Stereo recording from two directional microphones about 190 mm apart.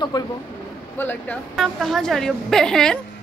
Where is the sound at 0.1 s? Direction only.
20° left (ahead or behind).